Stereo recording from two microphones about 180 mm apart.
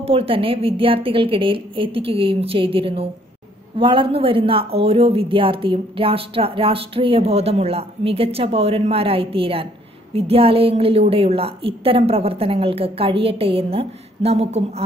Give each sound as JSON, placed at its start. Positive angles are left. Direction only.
{"t": 0.0, "sound": "speech", "side_deg": -30}